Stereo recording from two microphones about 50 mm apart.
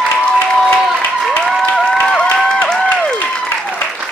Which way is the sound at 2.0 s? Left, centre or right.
Left.